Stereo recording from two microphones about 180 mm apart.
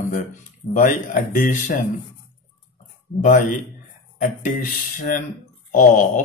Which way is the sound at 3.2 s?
45° left (ahead or behind).